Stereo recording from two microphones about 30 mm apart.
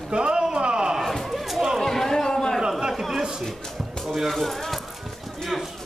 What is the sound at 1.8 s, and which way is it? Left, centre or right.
Chatter, centre.